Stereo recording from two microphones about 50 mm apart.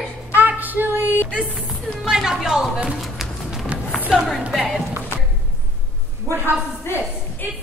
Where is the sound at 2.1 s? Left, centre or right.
Centre.